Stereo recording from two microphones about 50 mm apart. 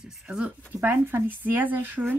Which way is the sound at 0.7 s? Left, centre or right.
Right.